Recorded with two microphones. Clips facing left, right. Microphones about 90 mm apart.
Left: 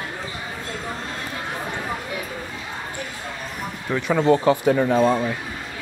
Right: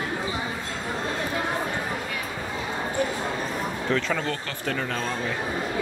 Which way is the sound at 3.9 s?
15° left (ahead or behind).